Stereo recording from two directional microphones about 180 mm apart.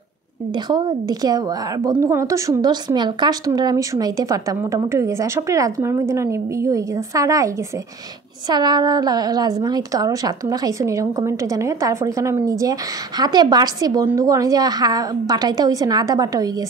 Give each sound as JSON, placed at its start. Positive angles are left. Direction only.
{"t": 0.7, "sound": "a woman's voice", "side_deg": -25}